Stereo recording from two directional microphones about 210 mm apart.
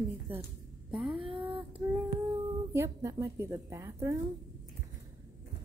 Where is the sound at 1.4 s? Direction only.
5° right (ahead or behind).